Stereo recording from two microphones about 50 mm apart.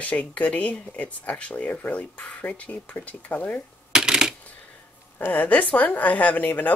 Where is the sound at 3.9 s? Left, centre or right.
Centre.